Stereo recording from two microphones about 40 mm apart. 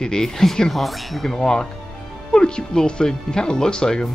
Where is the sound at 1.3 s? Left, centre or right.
Centre.